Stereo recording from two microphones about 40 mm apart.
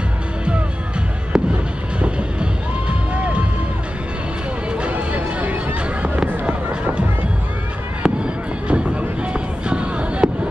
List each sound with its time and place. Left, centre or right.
1.3 s fireworks: centre
2.0 s music: right
4.9 s music: right
6.4 s fireworks: right